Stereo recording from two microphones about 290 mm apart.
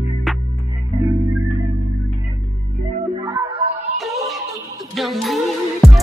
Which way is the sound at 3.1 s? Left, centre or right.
Centre.